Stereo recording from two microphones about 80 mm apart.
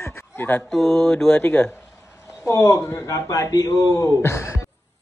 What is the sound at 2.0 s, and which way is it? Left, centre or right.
A man's voice, left.